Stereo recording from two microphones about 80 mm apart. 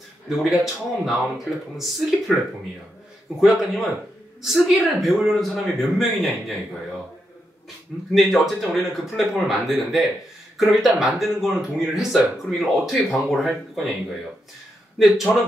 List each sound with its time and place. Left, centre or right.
0.3 s speech: centre
3.3 s speech: centre
8.1 s speech: centre
15.0 s speech: centre